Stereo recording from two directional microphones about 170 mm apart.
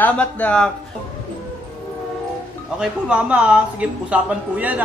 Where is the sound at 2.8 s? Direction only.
5° right (ahead or behind).